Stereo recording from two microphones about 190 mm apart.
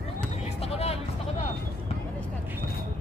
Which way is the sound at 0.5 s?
35° left (ahead or behind).